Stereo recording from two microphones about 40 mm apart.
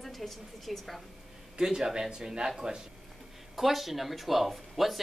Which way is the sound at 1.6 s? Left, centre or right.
Centre.